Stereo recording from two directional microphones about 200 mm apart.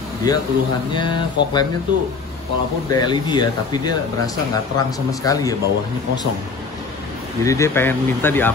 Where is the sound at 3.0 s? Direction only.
20° left (ahead or behind).